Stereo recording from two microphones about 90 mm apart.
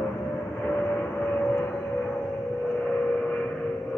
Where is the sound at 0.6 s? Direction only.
15° left (ahead or behind).